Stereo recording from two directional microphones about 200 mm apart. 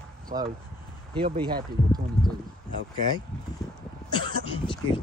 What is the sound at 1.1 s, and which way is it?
Speech, 25° right (ahead or behind).